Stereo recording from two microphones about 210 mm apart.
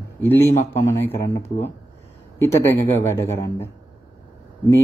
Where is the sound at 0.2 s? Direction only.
10° left (ahead or behind).